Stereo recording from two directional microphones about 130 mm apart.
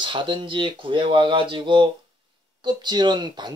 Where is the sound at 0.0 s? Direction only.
40° right (ahead or behind).